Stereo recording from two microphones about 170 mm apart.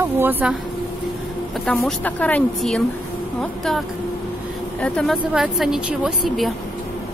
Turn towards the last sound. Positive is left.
turn(degrees=-5)  # may be behind; listen again after turning